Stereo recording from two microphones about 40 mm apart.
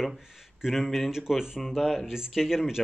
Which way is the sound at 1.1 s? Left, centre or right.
Centre.